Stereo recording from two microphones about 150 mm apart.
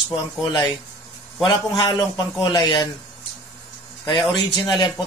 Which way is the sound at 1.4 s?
30° left (ahead or behind).